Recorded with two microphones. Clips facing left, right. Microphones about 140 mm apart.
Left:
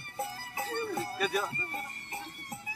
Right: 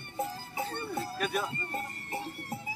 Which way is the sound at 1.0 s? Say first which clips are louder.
Right 2 dB; 5° right (ahead or behind).